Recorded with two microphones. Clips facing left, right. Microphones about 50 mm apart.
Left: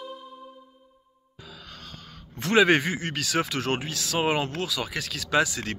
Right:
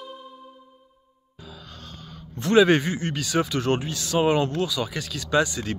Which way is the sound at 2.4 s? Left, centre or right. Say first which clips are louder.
Right 2 dB; left.